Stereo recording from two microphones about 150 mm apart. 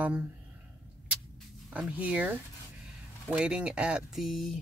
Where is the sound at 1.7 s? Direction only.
10° right (ahead or behind).